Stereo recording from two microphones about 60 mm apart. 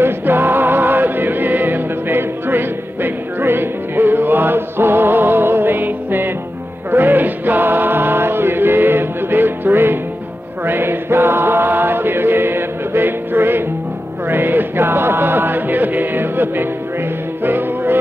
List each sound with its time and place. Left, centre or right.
0.0 s music: right
10.6 s chant: right
14.2 s music: right